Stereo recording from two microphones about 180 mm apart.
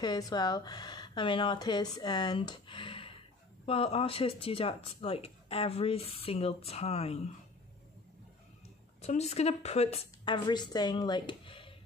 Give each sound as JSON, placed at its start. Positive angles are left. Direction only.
{"t": 0.0, "sound": "speech", "side_deg": 25}
{"t": 9.0, "sound": "speech", "side_deg": 35}